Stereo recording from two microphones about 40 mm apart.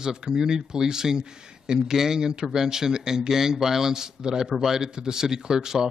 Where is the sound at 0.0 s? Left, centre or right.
Centre.